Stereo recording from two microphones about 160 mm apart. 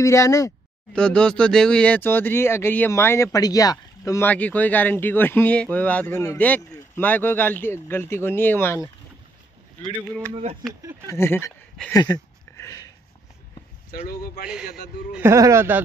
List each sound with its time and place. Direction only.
0.0 s speech: 20° left (ahead or behind)
0.9 s speech: 5° left (ahead or behind)
9.9 s speech: 10° left (ahead or behind)
10.3 s speech: 35° right (ahead or behind)
11.1 s a sound: 15° left (ahead or behind)
13.9 s speech: 70° left (ahead or behind)
14.7 s a man's voice: 80° left
15.1 s speech: 15° right (ahead or behind)